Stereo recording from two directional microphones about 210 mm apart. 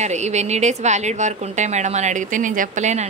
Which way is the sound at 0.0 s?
35° right (ahead or behind).